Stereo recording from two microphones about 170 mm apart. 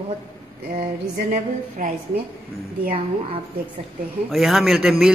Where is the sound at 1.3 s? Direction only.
50° right (ahead or behind).